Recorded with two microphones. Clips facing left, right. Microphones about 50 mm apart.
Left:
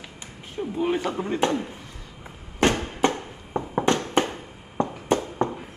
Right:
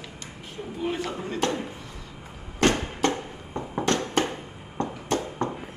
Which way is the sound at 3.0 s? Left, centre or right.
Centre.